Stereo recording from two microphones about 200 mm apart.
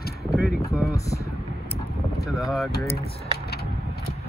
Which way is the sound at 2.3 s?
Centre (ahead or behind).